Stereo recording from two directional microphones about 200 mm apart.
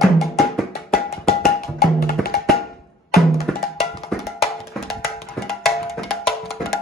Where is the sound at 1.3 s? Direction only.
50° left (ahead or behind).